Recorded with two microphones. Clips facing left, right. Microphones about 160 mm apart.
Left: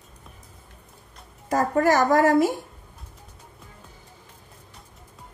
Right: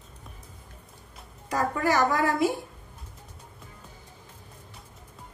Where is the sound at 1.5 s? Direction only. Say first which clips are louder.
Left 6 dB; 45° left (ahead or behind).